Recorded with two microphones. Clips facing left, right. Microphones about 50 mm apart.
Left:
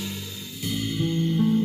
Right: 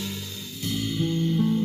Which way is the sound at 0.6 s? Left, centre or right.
Centre.